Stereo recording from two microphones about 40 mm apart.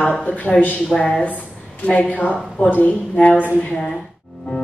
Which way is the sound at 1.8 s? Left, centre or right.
Left.